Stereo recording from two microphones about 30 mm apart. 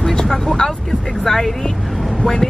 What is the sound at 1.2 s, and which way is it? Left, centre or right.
Speech, centre.